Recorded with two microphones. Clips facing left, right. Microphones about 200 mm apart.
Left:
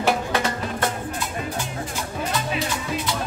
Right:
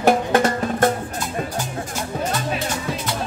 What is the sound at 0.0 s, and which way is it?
Music, 45° right (ahead or behind).